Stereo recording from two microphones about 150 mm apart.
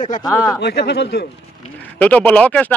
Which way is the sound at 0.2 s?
25° left (ahead or behind).